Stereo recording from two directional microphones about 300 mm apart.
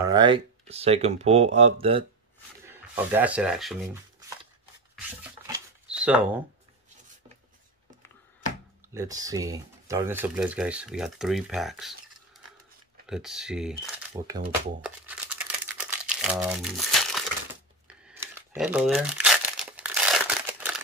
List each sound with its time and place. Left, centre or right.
0.0 s speech: centre
2.7 s speech: centre
4.9 s rub: centre
8.9 s speech: centre
13.0 s speech: centre
15.9 s crumpling: centre